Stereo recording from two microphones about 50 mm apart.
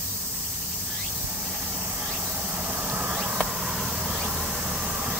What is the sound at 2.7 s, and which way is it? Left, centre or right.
Vehicle, right.